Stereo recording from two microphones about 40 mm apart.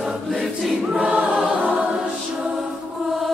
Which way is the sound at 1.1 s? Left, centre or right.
Right.